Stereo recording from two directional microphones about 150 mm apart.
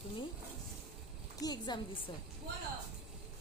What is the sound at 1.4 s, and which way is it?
Speech, 25° left (ahead or behind).